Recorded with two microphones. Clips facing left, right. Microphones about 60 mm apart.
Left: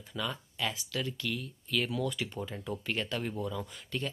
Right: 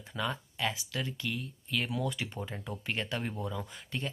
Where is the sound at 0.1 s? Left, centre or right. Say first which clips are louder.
Right 2 dB; right.